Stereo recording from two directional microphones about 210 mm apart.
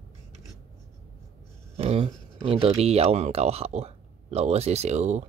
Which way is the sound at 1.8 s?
30° right (ahead or behind).